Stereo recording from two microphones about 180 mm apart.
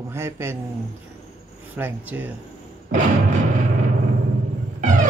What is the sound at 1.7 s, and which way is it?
Speech, 10° right (ahead or behind).